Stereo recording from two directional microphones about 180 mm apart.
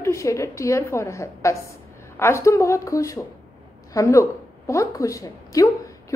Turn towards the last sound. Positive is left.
turn(degrees=20)  # may be behind; listen again after turning